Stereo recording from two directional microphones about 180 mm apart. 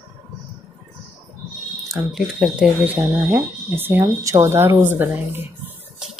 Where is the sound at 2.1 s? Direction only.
5° right (ahead or behind).